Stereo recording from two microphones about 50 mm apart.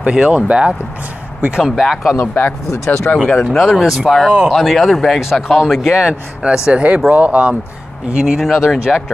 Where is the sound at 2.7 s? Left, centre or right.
Left.